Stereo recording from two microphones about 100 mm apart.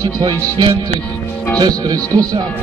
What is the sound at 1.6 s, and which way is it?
Speech, 40° right (ahead or behind).